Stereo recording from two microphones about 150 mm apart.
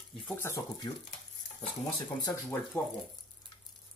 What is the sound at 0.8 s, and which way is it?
Speech, 30° left (ahead or behind).